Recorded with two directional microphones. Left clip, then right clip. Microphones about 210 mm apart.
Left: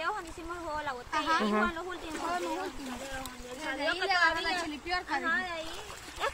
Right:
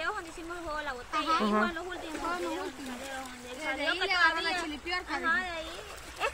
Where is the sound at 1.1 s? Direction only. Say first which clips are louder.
Even; 25° left (ahead or behind).